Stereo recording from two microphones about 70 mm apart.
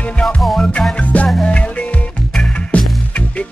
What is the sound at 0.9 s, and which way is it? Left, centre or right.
Music, centre.